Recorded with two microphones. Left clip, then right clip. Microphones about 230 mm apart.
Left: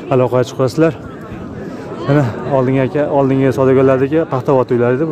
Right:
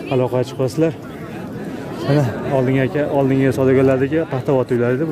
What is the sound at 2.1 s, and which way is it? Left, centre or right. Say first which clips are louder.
Speech: left 4 dB; centre.